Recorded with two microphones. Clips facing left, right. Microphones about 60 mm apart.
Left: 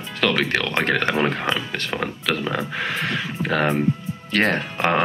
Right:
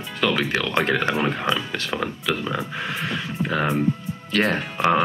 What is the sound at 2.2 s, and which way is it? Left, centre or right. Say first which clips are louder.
Speech: left 3 dB; left.